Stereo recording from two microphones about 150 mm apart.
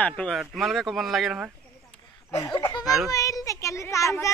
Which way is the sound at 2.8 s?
Centre (ahead or behind).